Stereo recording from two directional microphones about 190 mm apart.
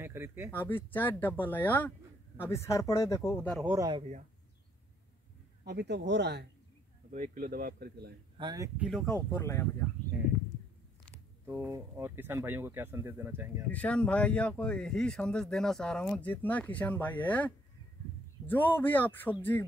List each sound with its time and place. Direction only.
0.0 s speech: 10° right (ahead or behind)
0.5 s speech: 10° left (ahead or behind)
3.5 s speech: 10° right (ahead or behind)
5.7 s speech: 60° right (ahead or behind)
7.1 s speech: 45° right (ahead or behind)
8.4 s speech: 20° right (ahead or behind)
8.7 s speech: 5° right (ahead or behind); by 9.8 s 15° left (ahead or behind)
11.4 s speech: 10° right (ahead or behind)
13.7 s speech: 5° left (ahead or behind)
18.5 s speech: 10° left (ahead or behind)